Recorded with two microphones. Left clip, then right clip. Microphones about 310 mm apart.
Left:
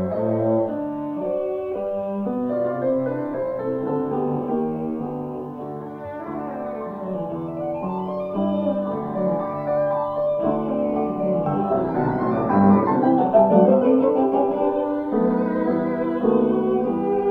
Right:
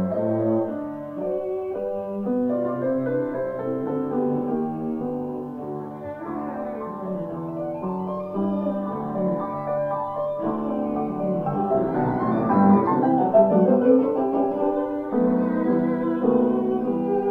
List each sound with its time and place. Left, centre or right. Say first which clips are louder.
0.0 s cello: left 1 dB; left
2.5 s music: left 2 dB; left
3.9 s music: left 1 dB; left
8.4 s music: left 4 dB; left
9.2 s music: left 3 dB; left
10.4 s music: left 4 dB; left
15.1 s music: even; left